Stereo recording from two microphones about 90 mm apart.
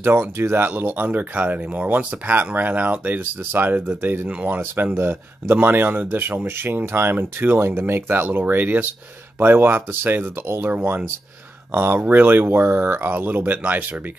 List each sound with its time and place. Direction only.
0.0 s speech: 30° right (ahead or behind)
4.3 s speech: 15° right (ahead or behind)